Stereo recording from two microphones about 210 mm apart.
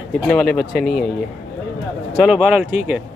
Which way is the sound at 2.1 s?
Centre (ahead or behind).